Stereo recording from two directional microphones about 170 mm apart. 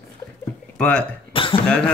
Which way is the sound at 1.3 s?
30° left (ahead or behind).